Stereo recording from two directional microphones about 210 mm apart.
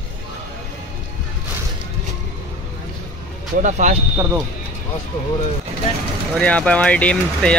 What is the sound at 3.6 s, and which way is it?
Speech, 35° right (ahead or behind).